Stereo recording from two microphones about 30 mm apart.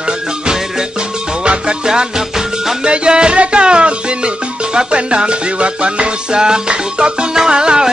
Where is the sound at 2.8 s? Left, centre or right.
Right.